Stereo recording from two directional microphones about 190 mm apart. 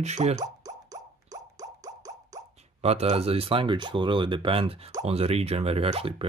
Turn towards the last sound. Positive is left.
turn(degrees=-30)  # may be behind; listen again after turning